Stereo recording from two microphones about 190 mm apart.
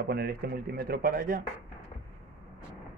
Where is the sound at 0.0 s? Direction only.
55° right (ahead or behind).